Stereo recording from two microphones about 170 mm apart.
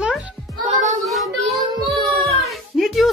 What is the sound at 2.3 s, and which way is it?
Music, centre (ahead or behind).